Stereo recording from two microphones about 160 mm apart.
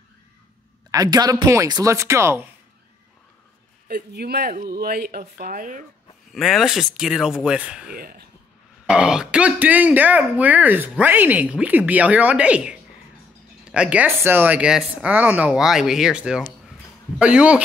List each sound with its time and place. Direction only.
0.9 s speech: 25° right (ahead or behind)
3.8 s speech: 85° right; by 5.9 s 60° right (ahead or behind)
6.3 s speech: centre (ahead or behind)
7.9 s speech: 65° right (ahead or behind)
8.8 s speech: 5° right (ahead or behind)